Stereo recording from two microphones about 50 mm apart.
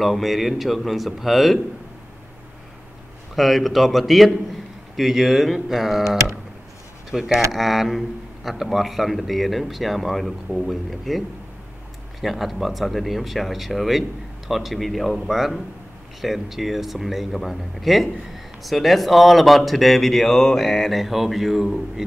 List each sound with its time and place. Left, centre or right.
0.0 s speech: centre
3.3 s speech: centre
7.1 s speech: centre